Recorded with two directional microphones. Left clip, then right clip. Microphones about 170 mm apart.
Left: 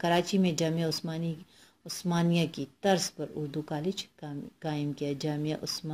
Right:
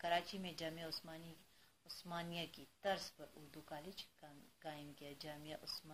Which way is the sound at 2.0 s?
45° left (ahead or behind).